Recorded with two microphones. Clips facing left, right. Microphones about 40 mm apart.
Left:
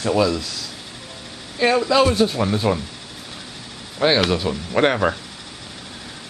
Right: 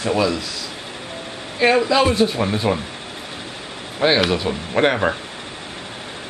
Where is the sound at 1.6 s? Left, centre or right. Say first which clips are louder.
Right 1 dB; centre.